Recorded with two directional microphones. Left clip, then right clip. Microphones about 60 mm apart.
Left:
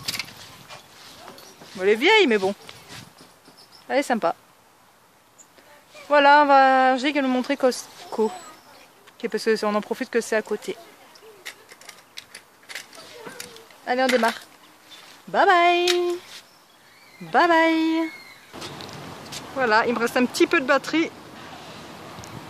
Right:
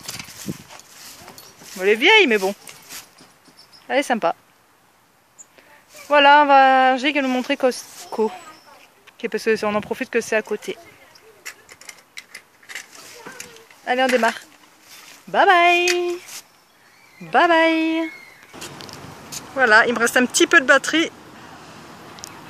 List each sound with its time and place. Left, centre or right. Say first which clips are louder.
1.8 s speech: right 3 dB; right
3.8 s speech: right 3 dB; right
6.0 s speech: right 3 dB; right
11.4 s a sound: right 3 dB; right
13.4 s a sound: right 1 dB; right
14.0 s speech: right 2 dB; right
15.3 s speech: right 3 dB; right
17.3 s speech: right 3 dB; centre
19.5 s speech: right 6 dB; right
21.4 s vehicle: left 1 dB; centre